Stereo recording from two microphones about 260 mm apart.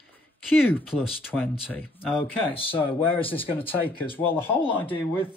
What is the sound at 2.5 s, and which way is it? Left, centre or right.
Speech, left.